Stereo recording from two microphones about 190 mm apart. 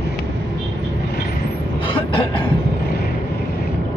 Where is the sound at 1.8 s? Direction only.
25° left (ahead or behind).